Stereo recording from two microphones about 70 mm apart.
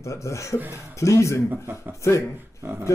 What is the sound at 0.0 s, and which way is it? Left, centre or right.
Speech, left.